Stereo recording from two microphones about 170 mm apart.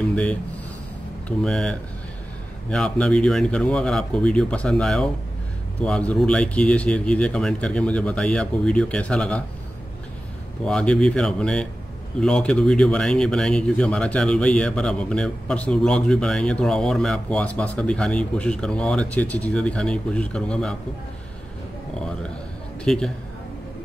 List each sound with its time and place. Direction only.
0.1 s speech: 5° left (ahead or behind)
1.4 s speech: 5° left (ahead or behind)
10.6 s speech: 5° left (ahead or behind)
22.8 s speech: 5° left (ahead or behind)